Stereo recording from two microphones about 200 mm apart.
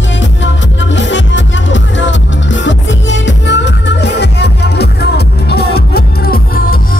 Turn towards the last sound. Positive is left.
turn(degrees=50)  # may be behind; listen again after turning